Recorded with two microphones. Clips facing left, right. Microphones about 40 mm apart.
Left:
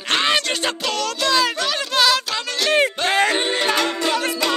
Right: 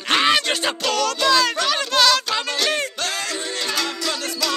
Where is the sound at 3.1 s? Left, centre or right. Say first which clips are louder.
Left 8 dB; left.